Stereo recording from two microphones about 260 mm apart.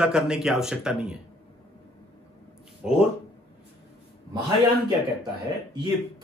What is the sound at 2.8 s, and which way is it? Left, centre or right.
Speech, centre.